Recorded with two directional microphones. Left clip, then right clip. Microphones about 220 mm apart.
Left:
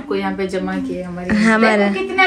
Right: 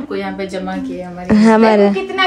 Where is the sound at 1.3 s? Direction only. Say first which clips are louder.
Right 4 dB; 20° right (ahead or behind).